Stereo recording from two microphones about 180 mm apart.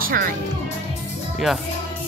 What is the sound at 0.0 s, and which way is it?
Music, 50° right (ahead or behind).